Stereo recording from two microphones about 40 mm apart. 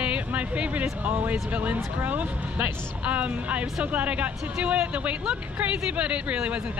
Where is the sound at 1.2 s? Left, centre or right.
Right.